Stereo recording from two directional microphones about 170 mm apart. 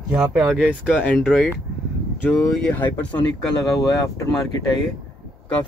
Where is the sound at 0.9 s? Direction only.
10° left (ahead or behind).